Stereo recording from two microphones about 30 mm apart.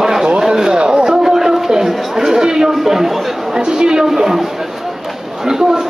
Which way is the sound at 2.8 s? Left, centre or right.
Centre.